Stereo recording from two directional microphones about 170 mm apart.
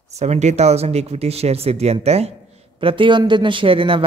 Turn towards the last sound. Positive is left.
turn(degrees=-30)  # may be behind; listen again after turning